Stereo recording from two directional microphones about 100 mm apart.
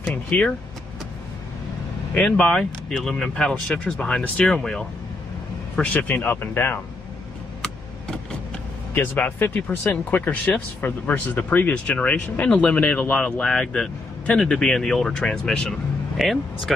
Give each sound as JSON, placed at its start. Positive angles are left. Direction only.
{"t": 0.1, "sound": "speech", "side_deg": 10}
{"t": 2.1, "sound": "speech", "side_deg": 10}
{"t": 8.9, "sound": "speech", "side_deg": 20}